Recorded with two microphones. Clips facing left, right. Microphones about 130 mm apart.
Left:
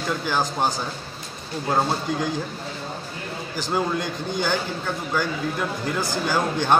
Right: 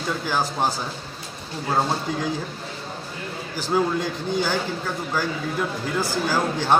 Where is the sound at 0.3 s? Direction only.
5° right (ahead or behind).